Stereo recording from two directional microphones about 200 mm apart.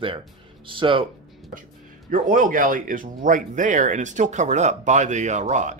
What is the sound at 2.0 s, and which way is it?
Speech, 40° right (ahead or behind).